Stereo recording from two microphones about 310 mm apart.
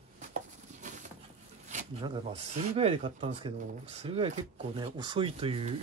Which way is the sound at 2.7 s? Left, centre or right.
Centre.